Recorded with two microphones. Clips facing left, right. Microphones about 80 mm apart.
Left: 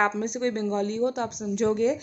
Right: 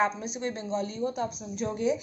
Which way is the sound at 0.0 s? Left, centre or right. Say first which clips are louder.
Left 4 dB; left.